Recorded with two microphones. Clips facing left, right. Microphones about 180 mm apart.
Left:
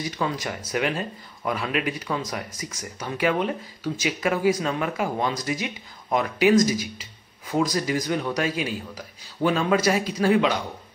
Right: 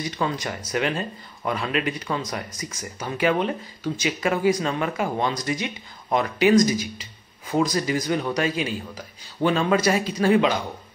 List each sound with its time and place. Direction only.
0.0 s speech: 5° left (ahead or behind)